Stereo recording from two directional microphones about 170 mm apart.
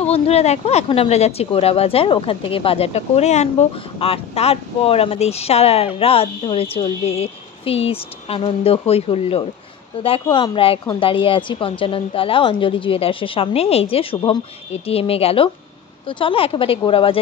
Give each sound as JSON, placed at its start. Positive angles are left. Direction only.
{"t": 0.0, "sound": "speech", "side_deg": 35}